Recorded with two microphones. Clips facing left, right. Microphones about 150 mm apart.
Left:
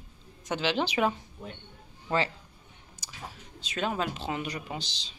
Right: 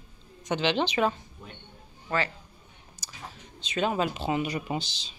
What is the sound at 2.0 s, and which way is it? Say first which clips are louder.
Speech: left 1 dB; 25° left (ahead or behind).